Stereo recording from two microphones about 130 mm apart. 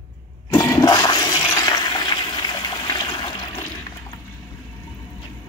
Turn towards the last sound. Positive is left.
turn(degrees=35)  # may be behind; listen again after turning